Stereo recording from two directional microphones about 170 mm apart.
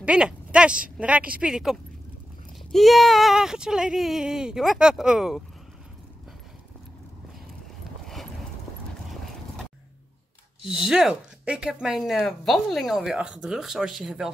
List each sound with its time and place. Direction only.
0.0 s a woman's voice: 5° right (ahead or behind)
10.6 s speech: 5° right (ahead or behind)